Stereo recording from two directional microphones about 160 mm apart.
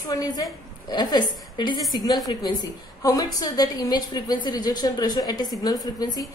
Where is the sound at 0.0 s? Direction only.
25° left (ahead or behind).